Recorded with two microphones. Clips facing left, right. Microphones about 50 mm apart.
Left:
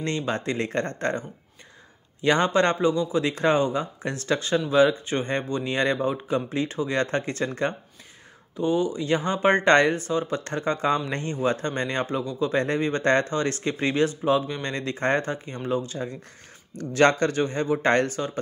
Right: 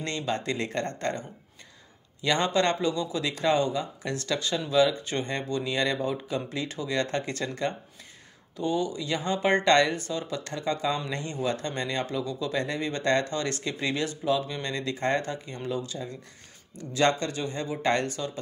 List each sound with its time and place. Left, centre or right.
0.0 s a man's voice: left
2.2 s a man's voice: left
16.7 s a man's voice: left